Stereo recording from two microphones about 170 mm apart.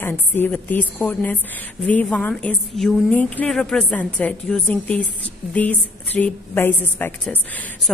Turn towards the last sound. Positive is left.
turn(degrees=10)  # may be behind; listen again after turning